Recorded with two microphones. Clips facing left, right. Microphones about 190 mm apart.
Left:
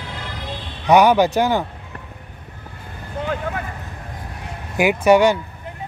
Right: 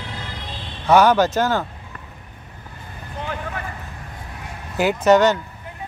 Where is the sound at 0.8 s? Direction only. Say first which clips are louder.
Left 1 dB; 15° left (ahead or behind).